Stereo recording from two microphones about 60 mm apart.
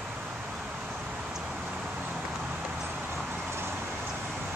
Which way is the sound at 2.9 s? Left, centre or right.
Right.